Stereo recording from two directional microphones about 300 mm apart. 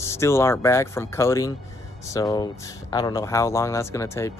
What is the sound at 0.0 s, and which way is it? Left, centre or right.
Speech, centre.